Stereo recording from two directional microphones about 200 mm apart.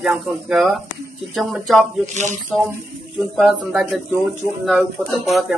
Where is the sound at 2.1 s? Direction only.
35° right (ahead or behind).